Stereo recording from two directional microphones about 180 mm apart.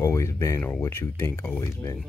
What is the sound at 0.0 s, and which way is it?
Speech, 15° left (ahead or behind).